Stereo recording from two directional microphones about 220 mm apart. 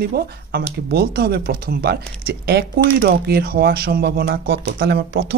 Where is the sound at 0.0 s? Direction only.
45° right (ahead or behind).